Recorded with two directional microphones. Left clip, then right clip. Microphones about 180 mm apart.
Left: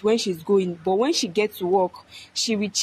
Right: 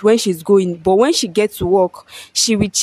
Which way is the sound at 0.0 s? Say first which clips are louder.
Right 8 dB; 50° right (ahead or behind).